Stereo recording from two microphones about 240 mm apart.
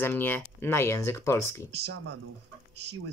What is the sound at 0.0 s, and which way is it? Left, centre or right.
Speech, centre.